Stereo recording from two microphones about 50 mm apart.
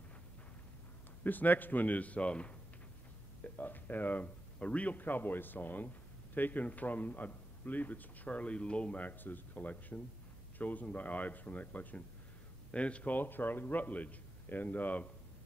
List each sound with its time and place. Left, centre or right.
1.2 s a man's voice: left
3.4 s a man's voice: left
9.2 s a man's voice: left